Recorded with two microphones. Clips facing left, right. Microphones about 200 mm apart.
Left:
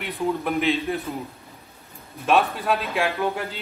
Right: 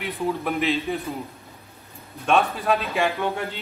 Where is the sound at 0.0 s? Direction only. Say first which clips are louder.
Left 1 dB; centre (ahead or behind).